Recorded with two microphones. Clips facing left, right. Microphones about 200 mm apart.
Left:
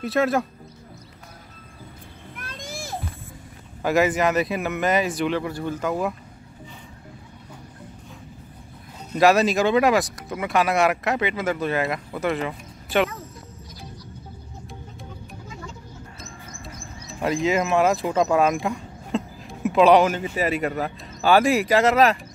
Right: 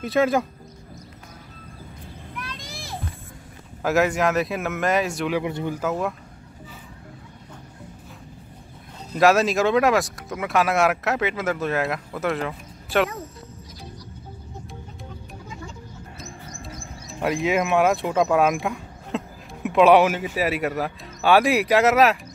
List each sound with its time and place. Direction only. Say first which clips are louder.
0.0 s speech: right 1 dB; centre (ahead or behind)
2.3 s a sound: left 2 dB; 50° left (ahead or behind)
3.8 s speech: even; centre (ahead or behind)
5.4 s speech: right 1 dB; 20° right (ahead or behind)
5.8 s speech: left 2 dB; centre (ahead or behind)
9.2 s speech: even; centre (ahead or behind)
16.2 s speech: right 2 dB; centre (ahead or behind)